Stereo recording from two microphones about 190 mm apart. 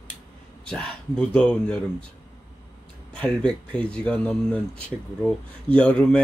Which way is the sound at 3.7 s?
5° left (ahead or behind).